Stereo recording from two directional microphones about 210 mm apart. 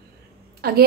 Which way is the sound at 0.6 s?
45° right (ahead or behind).